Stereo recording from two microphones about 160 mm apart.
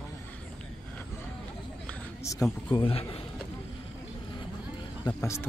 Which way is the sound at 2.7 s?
35° left (ahead or behind).